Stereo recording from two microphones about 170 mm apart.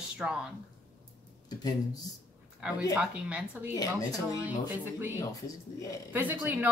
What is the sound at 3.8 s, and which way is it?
Speech, 20° left (ahead or behind).